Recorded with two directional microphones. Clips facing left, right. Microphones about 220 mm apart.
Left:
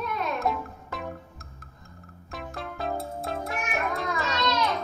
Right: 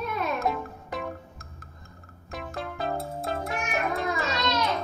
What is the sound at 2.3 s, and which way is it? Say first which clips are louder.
Music: right 2 dB; centre (ahead or behind).